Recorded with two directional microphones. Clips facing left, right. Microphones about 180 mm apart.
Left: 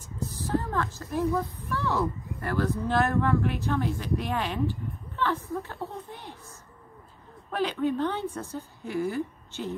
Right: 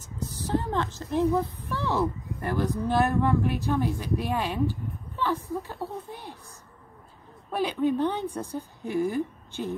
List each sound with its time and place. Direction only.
0.6 s a woman's voice: 20° right (ahead or behind)
7.5 s a woman's voice: 15° right (ahead or behind)